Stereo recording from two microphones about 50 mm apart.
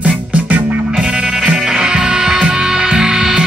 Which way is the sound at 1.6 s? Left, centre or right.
Centre.